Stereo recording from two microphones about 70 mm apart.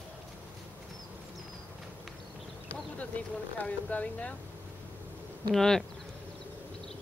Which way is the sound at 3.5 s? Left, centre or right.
Left.